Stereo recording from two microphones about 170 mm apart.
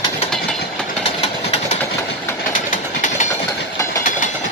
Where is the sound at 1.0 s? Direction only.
35° left (ahead or behind).